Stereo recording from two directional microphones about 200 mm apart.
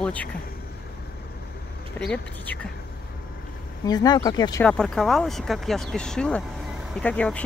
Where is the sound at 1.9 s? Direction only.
5° left (ahead or behind).